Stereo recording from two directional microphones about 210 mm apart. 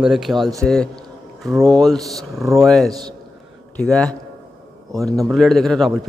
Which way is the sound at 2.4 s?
15° right (ahead or behind).